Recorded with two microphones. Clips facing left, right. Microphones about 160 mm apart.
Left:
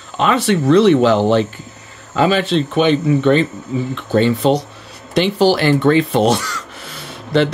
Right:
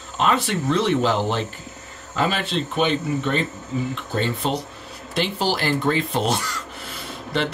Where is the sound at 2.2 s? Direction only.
90° left.